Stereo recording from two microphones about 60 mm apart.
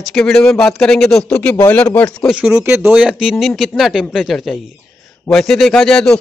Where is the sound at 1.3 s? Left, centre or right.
Left.